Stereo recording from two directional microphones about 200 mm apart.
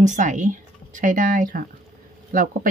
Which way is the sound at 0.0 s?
40° right (ahead or behind).